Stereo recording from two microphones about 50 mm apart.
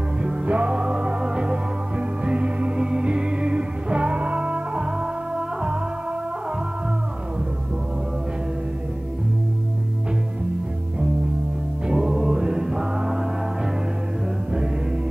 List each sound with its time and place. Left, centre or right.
0.2 s music: right
11.9 s music: centre